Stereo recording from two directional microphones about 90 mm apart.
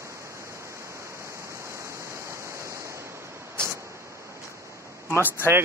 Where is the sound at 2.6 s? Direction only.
35° right (ahead or behind).